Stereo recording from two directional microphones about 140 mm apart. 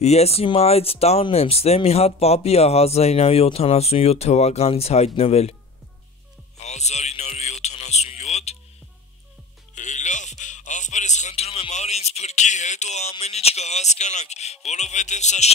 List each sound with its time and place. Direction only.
0.0 s speech: 50° left (ahead or behind)
6.6 s a sound: 55° left (ahead or behind)
9.8 s speech: 60° left (ahead or behind)